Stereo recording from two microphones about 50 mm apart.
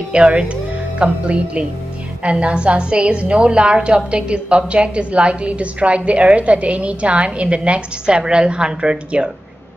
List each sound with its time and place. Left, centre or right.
0.1 s a woman's voice: right